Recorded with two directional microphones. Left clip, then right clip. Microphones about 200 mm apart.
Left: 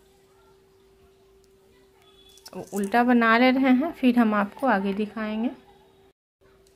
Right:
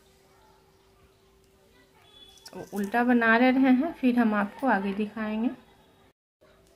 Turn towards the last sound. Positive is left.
turn(degrees=30)  # may be behind; listen again after turning